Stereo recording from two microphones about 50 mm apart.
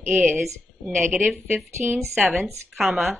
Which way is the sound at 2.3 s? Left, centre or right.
Centre.